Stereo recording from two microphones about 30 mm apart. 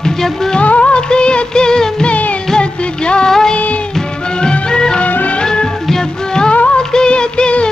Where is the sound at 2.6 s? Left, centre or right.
Left.